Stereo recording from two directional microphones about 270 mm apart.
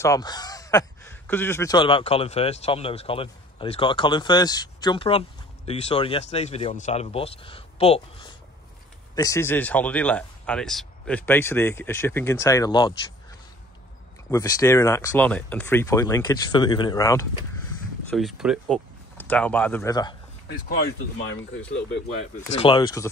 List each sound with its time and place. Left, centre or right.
0.0 s speech: centre
14.3 s speech: centre
18.1 s speech: centre
20.4 s speech: left
22.6 s speech: centre